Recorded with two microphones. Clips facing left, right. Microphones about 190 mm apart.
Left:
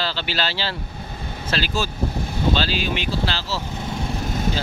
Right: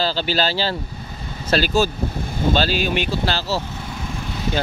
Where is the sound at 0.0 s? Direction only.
40° right (ahead or behind).